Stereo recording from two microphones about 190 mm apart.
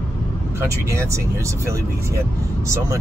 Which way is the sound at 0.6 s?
15° right (ahead or behind).